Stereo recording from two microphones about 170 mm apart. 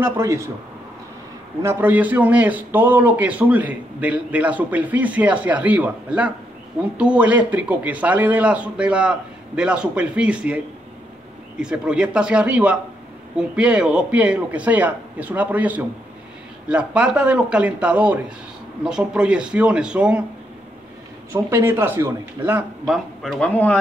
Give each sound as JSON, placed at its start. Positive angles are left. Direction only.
{"t": 0.0, "sound": "a man's voice", "side_deg": -15}
{"t": 1.6, "sound": "a man's voice", "side_deg": -10}
{"t": 11.6, "sound": "a man's voice", "side_deg": -5}
{"t": 21.3, "sound": "a man's voice", "side_deg": -15}